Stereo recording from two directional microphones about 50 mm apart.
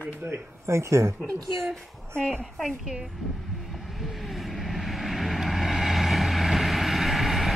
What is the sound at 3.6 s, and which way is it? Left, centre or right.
Vehicle, centre.